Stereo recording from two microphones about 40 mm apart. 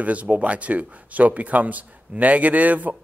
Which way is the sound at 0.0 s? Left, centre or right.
Right.